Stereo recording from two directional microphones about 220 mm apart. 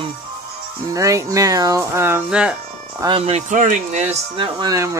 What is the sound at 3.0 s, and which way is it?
Speech, 25° right (ahead or behind).